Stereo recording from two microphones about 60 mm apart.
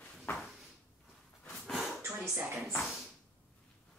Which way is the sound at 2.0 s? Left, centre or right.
Right.